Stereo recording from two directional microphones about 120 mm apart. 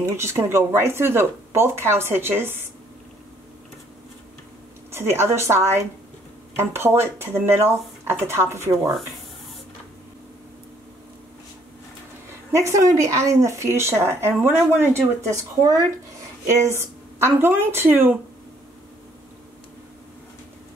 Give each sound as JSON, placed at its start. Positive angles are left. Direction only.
{"t": 0.0, "sound": "speech", "side_deg": -25}
{"t": 4.9, "sound": "speech", "side_deg": -20}
{"t": 12.5, "sound": "speech", "side_deg": -25}